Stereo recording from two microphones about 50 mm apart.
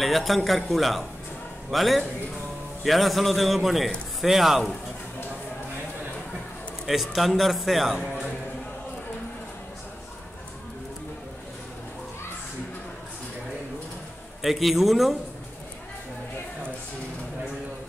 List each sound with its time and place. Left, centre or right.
0.0 s a man's voice: centre
6.9 s a man's voice: centre
14.4 s a man's voice: centre